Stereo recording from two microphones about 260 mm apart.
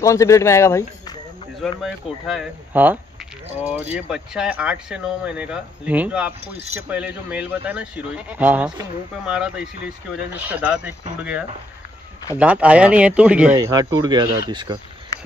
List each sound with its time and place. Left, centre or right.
0.0 s speech: centre
1.6 s speech: centre